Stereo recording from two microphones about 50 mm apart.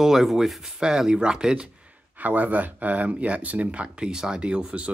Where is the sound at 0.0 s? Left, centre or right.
Centre.